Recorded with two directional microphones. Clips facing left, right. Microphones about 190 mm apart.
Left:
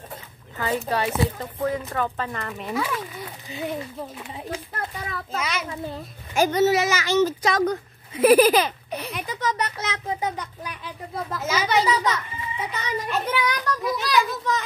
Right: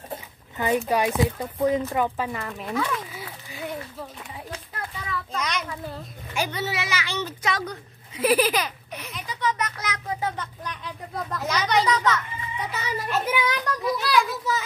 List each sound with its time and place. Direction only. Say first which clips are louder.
0.6 s speech: right 2 dB; 15° right (ahead or behind)
3.4 s speech: left 4 dB; 20° left (ahead or behind)
5.4 s speech: left 1 dB; 5° left (ahead or behind)
6.3 s a woman's voice: left 9 dB; 45° left (ahead or behind)
8.5 s speech: left 6 dB; 30° left (ahead or behind)
9.1 s a child's voice: right 1 dB; 55° left (ahead or behind); by 10.3 s 25° left (ahead or behind)
10.3 s speech: even; 10° left (ahead or behind)
12.7 s speech: even; 5° right (ahead or behind)
13.3 s speech: even; 20° right (ahead or behind)
13.7 s speech: right 1 dB; centre (ahead or behind)